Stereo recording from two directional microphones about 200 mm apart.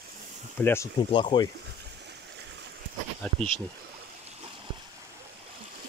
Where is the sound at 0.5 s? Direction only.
10° left (ahead or behind).